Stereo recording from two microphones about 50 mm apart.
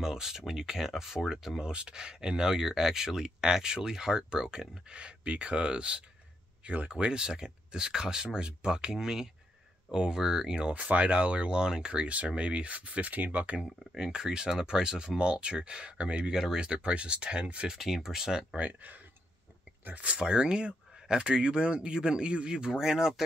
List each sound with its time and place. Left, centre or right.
0.0 s speech: centre; by 6.9 s right
6.9 s speech: centre
13.6 s speech: centre
17.7 s speech: centre
18.6 s speech: right
20.1 s speech: centre